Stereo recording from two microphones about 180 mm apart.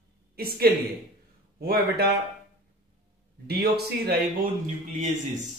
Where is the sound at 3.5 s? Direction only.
60° right (ahead or behind).